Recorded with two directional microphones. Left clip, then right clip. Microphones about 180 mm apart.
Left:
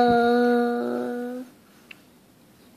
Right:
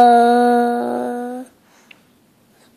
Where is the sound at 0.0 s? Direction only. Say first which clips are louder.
Right 9 dB; 45° right (ahead or behind).